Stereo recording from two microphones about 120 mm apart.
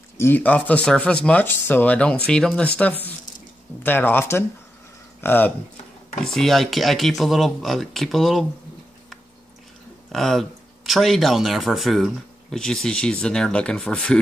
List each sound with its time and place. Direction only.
0.2 s speech: 15° left (ahead or behind)
6.2 s speech: 5° left (ahead or behind)
10.1 s speech: 5° left (ahead or behind)